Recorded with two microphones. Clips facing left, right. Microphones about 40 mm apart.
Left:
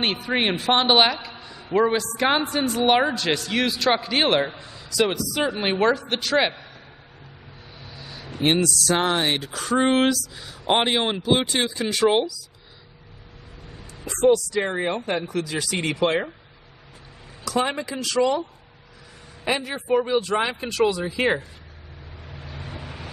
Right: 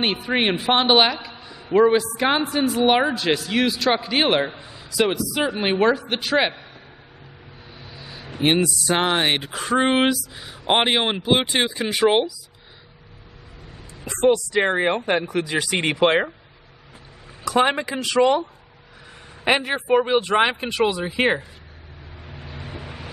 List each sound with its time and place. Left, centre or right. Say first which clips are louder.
0.0 s a man's voice: right 2 dB; centre
7.8 s speech: even; centre
14.6 s speech: right 5 dB; right
15.2 s speech: right 3 dB; right
17.7 s speech: right 3 dB; right
19.4 s a man's voice: right 5 dB; right
19.7 s speech: even; right
20.6 s speech: even; right
22.2 s vehicle: right 1 dB; centre